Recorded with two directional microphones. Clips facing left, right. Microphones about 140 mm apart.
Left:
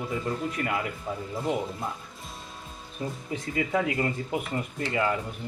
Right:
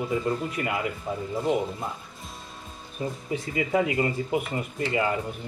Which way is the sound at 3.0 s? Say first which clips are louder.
Right 3 dB; 10° right (ahead or behind).